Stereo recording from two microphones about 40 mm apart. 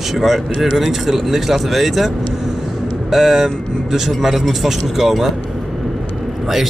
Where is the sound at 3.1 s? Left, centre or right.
Centre.